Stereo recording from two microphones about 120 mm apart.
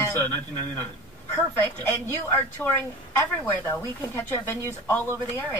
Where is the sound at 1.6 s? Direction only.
15° left (ahead or behind).